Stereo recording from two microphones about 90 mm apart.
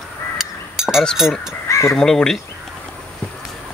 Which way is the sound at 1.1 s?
5° right (ahead or behind).